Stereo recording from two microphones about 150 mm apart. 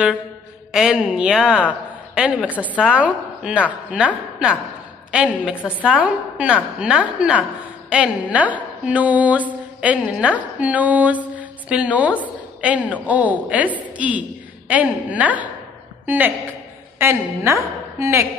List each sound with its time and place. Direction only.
0.7 s speech: 5° right (ahead or behind)
7.9 s mantra: 10° right (ahead or behind)
12.6 s speech: 10° right (ahead or behind)